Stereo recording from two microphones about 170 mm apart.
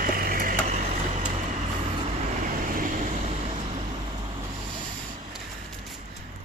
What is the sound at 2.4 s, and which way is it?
Vehicle, 50° right (ahead or behind).